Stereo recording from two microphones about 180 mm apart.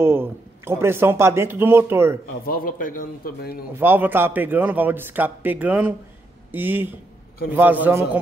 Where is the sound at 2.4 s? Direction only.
55° left (ahead or behind).